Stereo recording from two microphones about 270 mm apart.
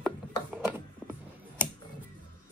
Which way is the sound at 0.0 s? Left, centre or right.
Centre.